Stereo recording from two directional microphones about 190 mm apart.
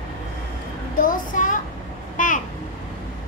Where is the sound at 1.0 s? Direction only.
45° left (ahead or behind).